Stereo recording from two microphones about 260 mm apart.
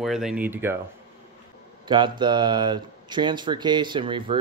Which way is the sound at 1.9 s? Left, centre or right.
Centre.